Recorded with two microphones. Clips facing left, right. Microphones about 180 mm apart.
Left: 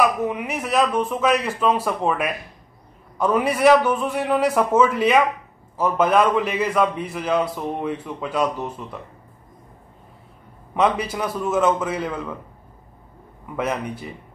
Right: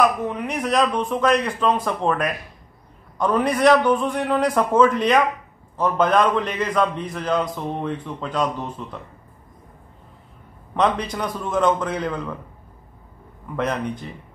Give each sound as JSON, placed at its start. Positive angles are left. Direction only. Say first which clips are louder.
{"t": 0.0, "sound": "a man's voice", "louder": "even", "side_deg": 10}
{"t": 10.7, "sound": "a man's voice", "louder": "left 1 dB", "side_deg": 5}
{"t": 13.6, "sound": "a man's voice", "louder": "right 1 dB", "side_deg": 5}